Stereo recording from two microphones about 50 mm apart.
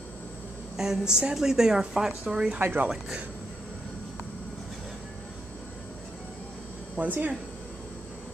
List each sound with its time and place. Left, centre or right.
0.7 s a woman's voice: centre
2.6 s speech: right
7.0 s speech: right